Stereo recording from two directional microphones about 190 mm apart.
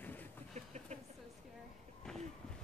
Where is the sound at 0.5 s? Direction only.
35° right (ahead or behind).